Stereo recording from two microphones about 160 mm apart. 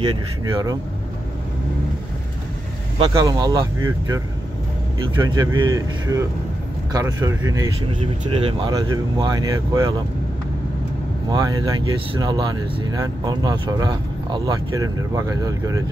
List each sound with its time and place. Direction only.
0.5 s speech: 20° right (ahead or behind)
3.0 s speech: 25° right (ahead or behind)
5.2 s speech: 25° right (ahead or behind)
8.0 s speech: 35° right (ahead or behind)
11.2 s speech: 25° right (ahead or behind)